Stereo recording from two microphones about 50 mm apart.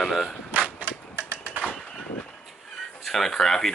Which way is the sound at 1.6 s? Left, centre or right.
Centre.